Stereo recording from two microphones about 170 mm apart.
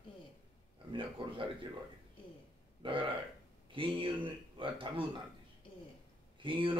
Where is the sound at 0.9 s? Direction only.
30° right (ahead or behind).